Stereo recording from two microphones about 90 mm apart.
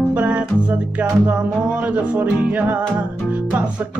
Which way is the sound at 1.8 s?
15° right (ahead or behind).